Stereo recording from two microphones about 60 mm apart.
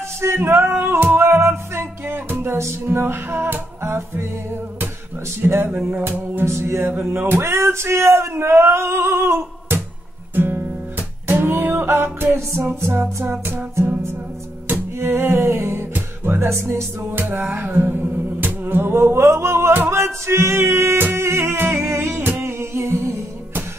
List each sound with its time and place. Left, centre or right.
0.2 s music: right
3.8 s speech: right
5.4 s music: right
6.4 s speech: right
10.3 s music: right
20.2 s speech: right
21.0 s music: right